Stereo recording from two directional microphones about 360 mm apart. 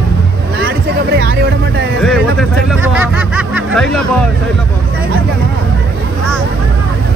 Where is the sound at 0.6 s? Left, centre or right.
Right.